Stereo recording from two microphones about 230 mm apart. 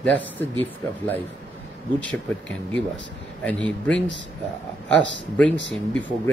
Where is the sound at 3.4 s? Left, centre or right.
Centre.